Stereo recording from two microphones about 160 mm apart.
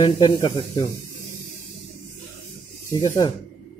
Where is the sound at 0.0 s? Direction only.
25° left (ahead or behind).